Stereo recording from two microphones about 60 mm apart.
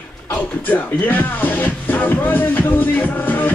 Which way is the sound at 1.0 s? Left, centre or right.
Left.